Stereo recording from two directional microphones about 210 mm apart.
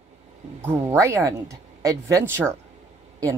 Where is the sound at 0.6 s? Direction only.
15° right (ahead or behind).